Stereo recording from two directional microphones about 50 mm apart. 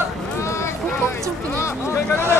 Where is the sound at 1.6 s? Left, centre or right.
Left.